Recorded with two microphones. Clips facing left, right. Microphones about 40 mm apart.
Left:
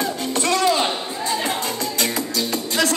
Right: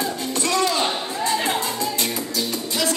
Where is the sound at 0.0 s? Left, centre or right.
Left.